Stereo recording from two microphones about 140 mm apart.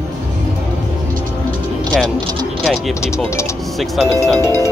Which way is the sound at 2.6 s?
5° left (ahead or behind).